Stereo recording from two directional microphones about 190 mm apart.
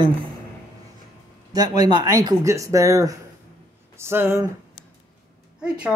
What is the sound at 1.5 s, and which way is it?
Speech, 20° right (ahead or behind).